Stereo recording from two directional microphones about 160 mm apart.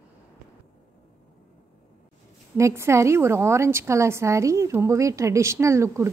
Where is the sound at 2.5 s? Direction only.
15° right (ahead or behind).